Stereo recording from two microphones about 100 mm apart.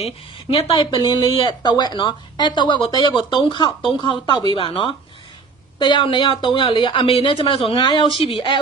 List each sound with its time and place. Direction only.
0.0 s a woman's voice: 70° left (ahead or behind)
0.8 s a woman's voice: 50° left (ahead or behind)
5.8 s speech: 50° left (ahead or behind)
7.1 s speech: 75° left (ahead or behind); by 8.5 s 60° left (ahead or behind)